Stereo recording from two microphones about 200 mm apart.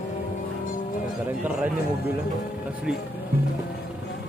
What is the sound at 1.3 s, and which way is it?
Speech, 5° right (ahead or behind).